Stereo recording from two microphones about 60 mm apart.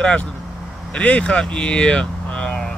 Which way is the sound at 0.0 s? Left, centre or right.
Centre.